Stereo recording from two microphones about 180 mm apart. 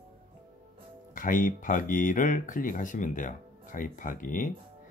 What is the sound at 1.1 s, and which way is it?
Speech, 50° left (ahead or behind).